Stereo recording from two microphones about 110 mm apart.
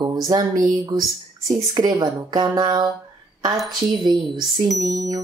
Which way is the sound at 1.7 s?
30° right (ahead or behind).